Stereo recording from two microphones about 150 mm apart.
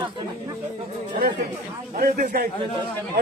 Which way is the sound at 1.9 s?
65° right (ahead or behind).